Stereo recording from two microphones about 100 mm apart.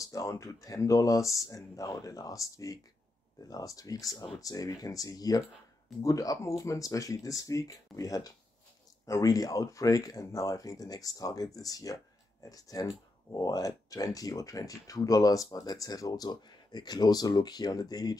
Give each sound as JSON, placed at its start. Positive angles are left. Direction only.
{"t": 0.0, "sound": "speech", "side_deg": 35}